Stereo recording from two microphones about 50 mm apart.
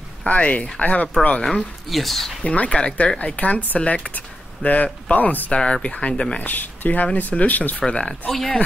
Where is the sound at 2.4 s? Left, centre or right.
Left.